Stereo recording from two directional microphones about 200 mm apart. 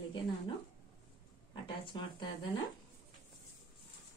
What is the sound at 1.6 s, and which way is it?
Speech, 25° left (ahead or behind).